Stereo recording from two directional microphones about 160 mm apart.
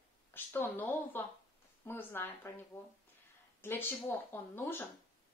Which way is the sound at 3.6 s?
15° left (ahead or behind).